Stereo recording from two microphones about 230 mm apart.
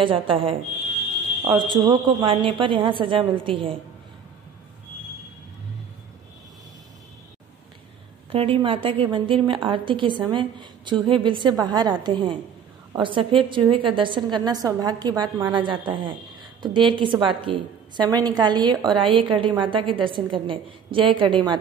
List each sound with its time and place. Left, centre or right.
0.0 s a woman's voice: right
8.3 s a woman's voice: right